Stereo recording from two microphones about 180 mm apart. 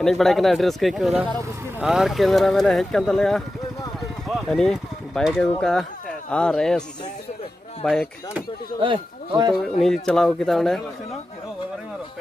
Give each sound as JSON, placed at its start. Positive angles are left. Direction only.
{"t": 0.0, "sound": "speech", "side_deg": 0}
{"t": 7.8, "sound": "speech", "side_deg": 0}
{"t": 8.8, "sound": "speech", "side_deg": -30}
{"t": 9.5, "sound": "speech", "side_deg": 0}